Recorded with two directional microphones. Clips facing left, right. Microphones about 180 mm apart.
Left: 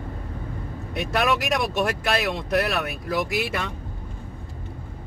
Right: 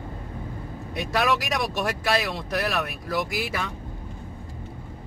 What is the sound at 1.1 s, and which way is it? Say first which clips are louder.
Speech: left 1 dB; centre (ahead or behind).